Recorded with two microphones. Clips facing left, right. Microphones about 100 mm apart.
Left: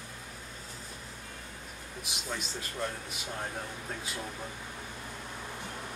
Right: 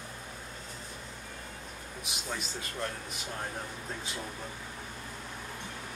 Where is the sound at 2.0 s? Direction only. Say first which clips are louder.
Even; centre (ahead or behind).